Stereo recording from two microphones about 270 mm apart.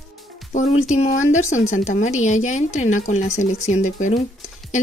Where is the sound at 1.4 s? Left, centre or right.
Left.